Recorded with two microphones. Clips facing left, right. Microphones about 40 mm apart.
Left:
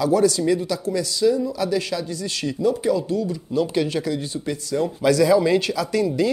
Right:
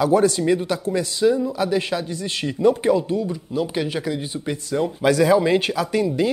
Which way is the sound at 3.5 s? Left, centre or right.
Centre.